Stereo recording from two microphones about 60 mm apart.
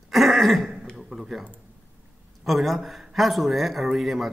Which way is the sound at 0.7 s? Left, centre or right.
Centre.